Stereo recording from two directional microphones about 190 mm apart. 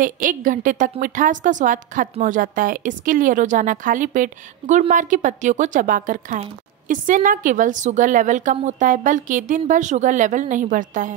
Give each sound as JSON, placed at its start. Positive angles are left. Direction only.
{"t": 0.0, "sound": "a woman's voice", "side_deg": -45}